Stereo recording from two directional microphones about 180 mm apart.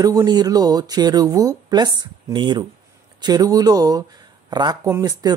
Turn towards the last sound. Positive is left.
turn(degrees=-20)  # may be behind; listen again after turning